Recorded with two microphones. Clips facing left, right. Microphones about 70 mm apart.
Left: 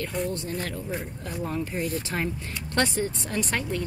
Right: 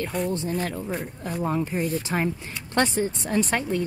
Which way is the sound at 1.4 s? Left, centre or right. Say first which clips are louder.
Right 4 dB; right.